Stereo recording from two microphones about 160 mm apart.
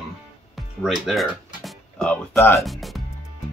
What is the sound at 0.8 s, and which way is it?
Speech, centre (ahead or behind).